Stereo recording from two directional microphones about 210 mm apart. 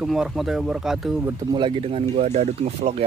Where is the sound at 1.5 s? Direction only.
25° right (ahead or behind).